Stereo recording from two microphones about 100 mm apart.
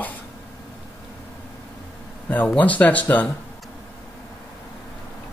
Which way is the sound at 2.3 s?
15° left (ahead or behind).